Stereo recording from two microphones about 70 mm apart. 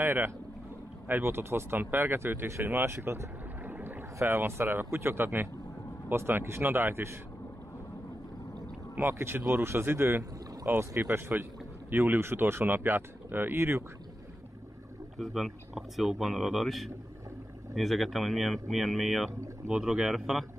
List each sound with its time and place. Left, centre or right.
0.0 s speech: right
4.2 s speech: right
8.9 s speech: right
15.1 s speech: centre